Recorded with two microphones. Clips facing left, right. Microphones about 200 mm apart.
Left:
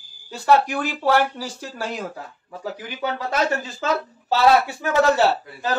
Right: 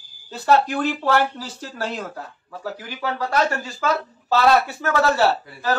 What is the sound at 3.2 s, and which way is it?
Speech, 20° left (ahead or behind).